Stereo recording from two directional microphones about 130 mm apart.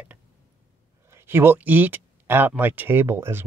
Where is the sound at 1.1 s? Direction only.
15° right (ahead or behind).